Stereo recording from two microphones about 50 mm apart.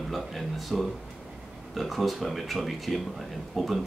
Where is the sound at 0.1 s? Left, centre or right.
Centre.